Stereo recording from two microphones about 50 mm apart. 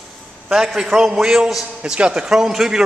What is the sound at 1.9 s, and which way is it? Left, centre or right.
Speech, centre.